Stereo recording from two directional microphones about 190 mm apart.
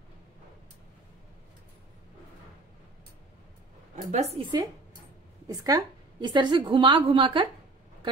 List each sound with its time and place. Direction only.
3.9 s a woman's voice: 35° right (ahead or behind)